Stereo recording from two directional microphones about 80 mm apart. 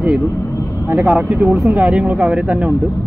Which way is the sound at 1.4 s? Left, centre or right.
Centre.